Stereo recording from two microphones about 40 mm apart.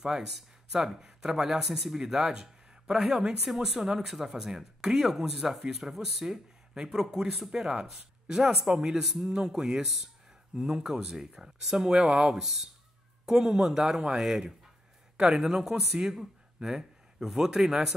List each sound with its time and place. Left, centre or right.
0.0 s speech: centre